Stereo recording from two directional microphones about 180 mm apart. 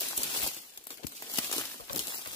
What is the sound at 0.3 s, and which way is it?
Crumpling, 30° left (ahead or behind).